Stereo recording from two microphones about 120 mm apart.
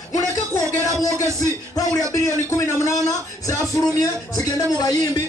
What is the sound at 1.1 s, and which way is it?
Music, 25° right (ahead or behind).